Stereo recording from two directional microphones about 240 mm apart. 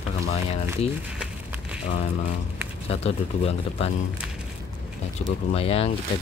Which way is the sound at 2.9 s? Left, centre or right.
Left.